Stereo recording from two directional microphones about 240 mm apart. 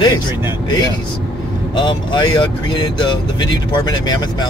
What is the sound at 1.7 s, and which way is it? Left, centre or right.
Speech, centre.